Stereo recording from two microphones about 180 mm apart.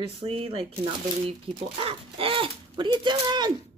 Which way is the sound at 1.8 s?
30° right (ahead or behind).